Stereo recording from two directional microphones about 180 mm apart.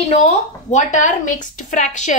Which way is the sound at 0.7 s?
40° left (ahead or behind).